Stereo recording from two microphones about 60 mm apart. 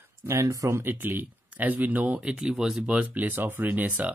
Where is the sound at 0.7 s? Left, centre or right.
Right.